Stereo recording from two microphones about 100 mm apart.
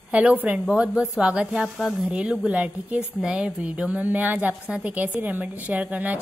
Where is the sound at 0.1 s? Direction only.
15° right (ahead or behind).